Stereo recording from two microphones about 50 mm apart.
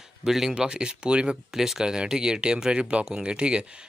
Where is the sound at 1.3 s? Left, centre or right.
Centre.